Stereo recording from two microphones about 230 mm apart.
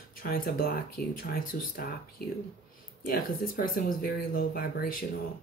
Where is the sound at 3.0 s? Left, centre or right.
Left.